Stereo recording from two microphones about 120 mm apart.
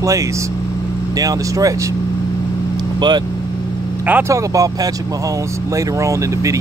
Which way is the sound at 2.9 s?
35° right (ahead or behind).